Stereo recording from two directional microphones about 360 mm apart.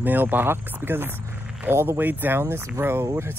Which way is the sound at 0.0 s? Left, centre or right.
Centre.